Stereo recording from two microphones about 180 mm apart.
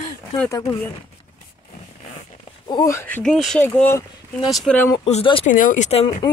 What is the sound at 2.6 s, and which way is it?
Speech, 20° left (ahead or behind).